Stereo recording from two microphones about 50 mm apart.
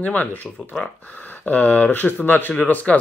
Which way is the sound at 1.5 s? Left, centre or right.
Left.